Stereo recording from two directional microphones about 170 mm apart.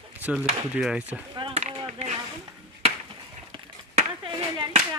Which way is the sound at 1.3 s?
35° right (ahead or behind).